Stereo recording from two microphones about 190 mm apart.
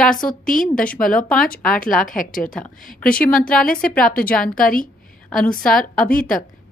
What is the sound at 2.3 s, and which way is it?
A woman's voice, 5° left (ahead or behind).